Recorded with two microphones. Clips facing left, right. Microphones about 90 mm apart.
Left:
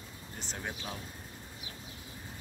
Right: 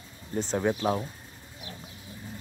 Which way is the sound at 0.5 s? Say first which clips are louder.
Right 15 dB; 75° right (ahead or behind).